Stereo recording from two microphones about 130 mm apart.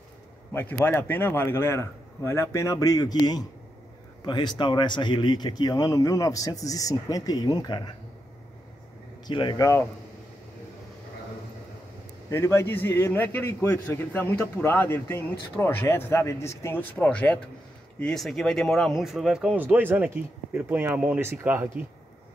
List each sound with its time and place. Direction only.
0.5 s a man's voice: 15° left (ahead or behind); by 7.9 s 35° left (ahead or behind)
9.3 s speech: 40° left (ahead or behind)
9.6 s a man's voice: 20° left (ahead or behind)
12.3 s speech: 20° left (ahead or behind); by 21.8 s 15° right (ahead or behind)